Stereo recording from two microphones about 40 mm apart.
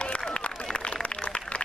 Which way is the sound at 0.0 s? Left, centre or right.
Left.